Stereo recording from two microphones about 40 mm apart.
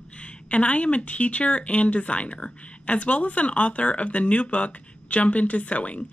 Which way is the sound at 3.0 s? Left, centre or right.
Left.